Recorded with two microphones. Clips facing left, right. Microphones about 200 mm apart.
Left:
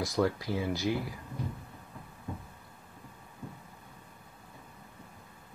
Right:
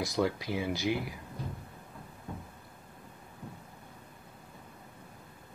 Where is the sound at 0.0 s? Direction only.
20° right (ahead or behind).